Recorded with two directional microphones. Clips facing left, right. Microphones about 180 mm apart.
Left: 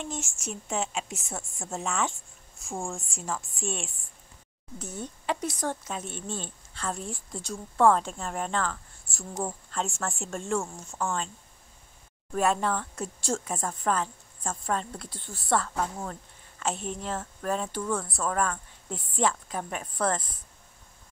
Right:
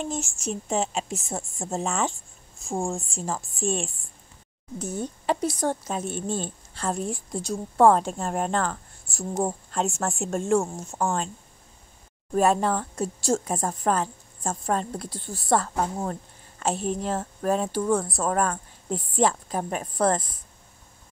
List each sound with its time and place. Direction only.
0.0 s speech: 35° right (ahead or behind)
12.3 s speech: 40° right (ahead or behind)